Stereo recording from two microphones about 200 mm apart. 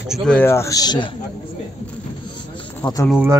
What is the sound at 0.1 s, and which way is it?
Speech, 5° left (ahead or behind).